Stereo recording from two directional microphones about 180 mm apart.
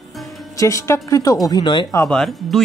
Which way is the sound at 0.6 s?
15° left (ahead or behind).